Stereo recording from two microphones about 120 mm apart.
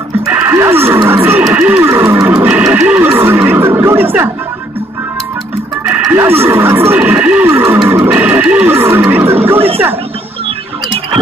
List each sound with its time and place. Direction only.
0.3 s music: 15° right (ahead or behind)
1.0 s speech: 20° right (ahead or behind)
2.4 s neigh: 10° right (ahead or behind)
6.1 s speech: 20° right (ahead or behind)
9.1 s a sound: 20° right (ahead or behind)